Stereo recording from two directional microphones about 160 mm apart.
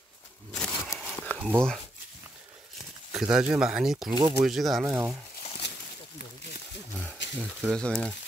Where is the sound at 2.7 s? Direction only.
5° right (ahead or behind).